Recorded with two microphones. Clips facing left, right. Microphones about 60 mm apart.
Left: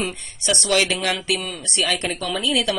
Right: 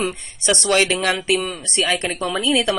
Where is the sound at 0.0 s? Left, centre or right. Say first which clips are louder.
Right 3 dB; right.